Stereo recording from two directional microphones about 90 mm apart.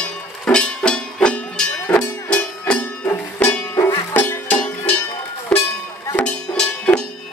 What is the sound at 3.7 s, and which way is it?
Music, 40° left (ahead or behind).